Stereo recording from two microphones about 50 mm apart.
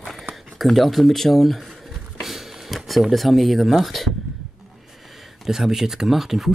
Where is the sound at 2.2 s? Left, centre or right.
Centre.